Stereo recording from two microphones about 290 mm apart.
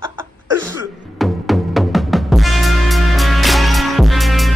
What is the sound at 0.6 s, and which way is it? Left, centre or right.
Music, centre.